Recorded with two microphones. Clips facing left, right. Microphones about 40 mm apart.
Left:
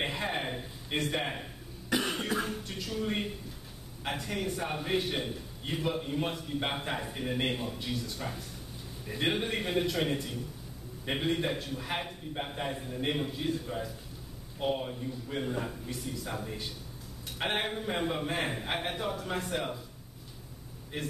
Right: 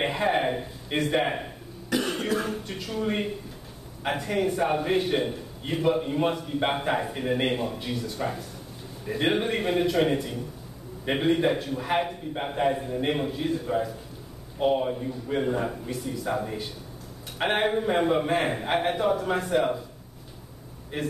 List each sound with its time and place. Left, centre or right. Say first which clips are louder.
0.0 s a sound: right 9 dB; centre
1.2 s a man's voice: right 8 dB; centre
1.9 s cough: right 4 dB; centre
2.4 s a man's voice: right 5 dB; centre
15.9 s a man's voice: right 8 dB; centre
17.4 s a man's voice: right 8 dB; centre
20.9 s a man's voice: right 6 dB; centre